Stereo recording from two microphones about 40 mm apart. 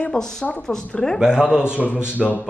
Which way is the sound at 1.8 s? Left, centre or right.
Centre.